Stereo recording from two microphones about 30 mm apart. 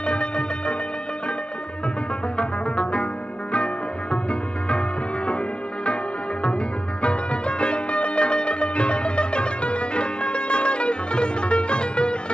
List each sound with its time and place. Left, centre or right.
0.0 s music: left
2.3 s music: left
7.0 s music: left